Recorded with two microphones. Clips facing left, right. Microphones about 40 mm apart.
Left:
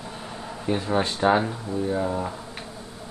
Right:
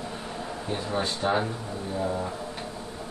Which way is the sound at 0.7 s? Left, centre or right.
Left.